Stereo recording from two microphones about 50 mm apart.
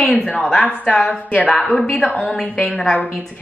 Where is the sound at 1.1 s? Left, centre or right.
Left.